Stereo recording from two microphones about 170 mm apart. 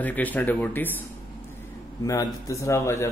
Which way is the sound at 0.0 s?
10° left (ahead or behind).